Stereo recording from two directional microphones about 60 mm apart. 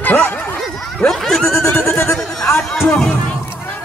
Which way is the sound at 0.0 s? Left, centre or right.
Left.